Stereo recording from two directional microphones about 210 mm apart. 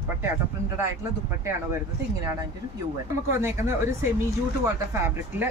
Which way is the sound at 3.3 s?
10° right (ahead or behind).